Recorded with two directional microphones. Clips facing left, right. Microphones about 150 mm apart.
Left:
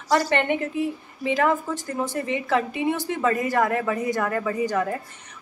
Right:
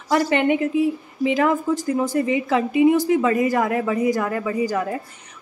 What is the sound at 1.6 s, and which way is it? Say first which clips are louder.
Speech: right 7 dB; 10° right (ahead or behind).